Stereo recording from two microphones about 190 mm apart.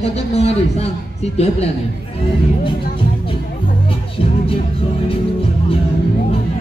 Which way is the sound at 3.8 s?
30° left (ahead or behind).